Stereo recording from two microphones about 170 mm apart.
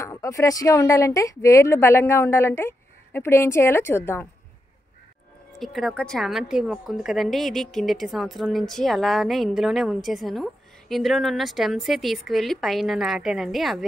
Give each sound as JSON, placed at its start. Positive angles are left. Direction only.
{"t": 0.0, "sound": "speech", "side_deg": 20}
{"t": 5.6, "sound": "a woman's voice", "side_deg": 0}